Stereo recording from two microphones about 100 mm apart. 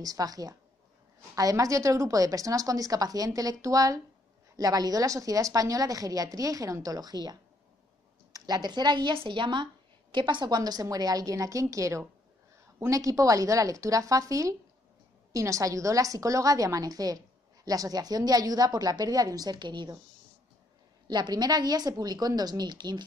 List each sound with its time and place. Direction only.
0.0 s a woman's voice: 40° right (ahead or behind)
21.1 s a woman's voice: 45° right (ahead or behind)